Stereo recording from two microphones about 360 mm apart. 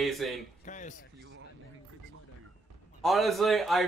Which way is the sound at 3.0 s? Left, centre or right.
Centre.